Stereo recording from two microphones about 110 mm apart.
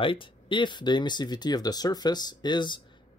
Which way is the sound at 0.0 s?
50° left (ahead or behind).